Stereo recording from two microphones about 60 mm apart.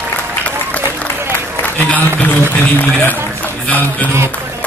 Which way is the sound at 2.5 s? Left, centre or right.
Left.